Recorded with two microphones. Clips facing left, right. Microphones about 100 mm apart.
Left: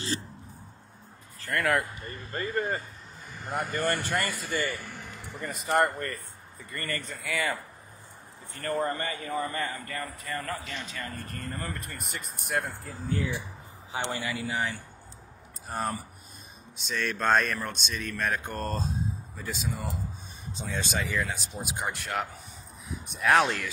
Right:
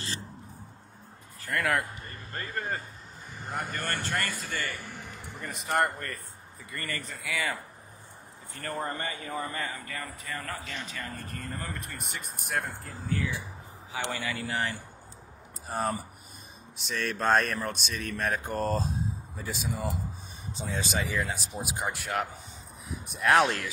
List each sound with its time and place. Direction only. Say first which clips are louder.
1.5 s speech: left 2 dB; centre (ahead or behind)
5.3 s speech: left 3 dB; centre (ahead or behind)
8.9 s a man's voice: left 3 dB; 15° right (ahead or behind)
9.6 s speech: left 3 dB; centre (ahead or behind)
13.9 s a man's voice: left 1 dB; 25° left (ahead or behind)
14.3 s speech: left 1 dB; 5° left (ahead or behind)
20.7 s speech: even; centre (ahead or behind)